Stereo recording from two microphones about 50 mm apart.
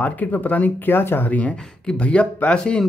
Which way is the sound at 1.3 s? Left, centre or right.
Left.